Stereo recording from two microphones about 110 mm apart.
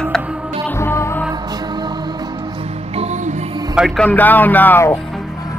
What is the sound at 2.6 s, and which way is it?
Music, 70° right (ahead or behind).